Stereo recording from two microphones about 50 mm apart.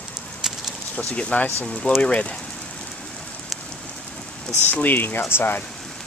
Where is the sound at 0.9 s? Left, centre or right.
Left.